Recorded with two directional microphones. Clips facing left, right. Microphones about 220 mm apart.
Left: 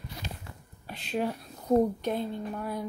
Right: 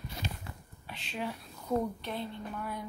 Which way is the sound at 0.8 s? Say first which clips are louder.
Left 7 dB; 45° left (ahead or behind).